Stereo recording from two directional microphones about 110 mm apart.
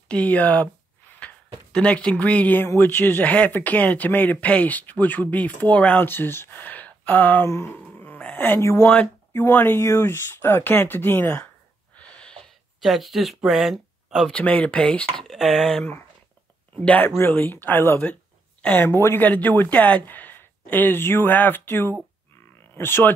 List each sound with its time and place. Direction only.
0.1 s speech: 10° left (ahead or behind)
8.9 s speech: 15° left (ahead or behind)
12.0 s a sound: 10° left (ahead or behind)
12.8 s speech: centre (ahead or behind)
14.3 s speech: 15° left (ahead or behind)
16.8 s speech: 15° left (ahead or behind)